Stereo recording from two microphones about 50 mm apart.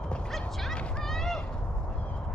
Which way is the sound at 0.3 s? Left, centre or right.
Centre.